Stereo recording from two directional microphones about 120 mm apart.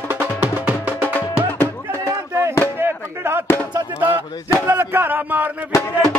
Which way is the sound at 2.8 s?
20° right (ahead or behind).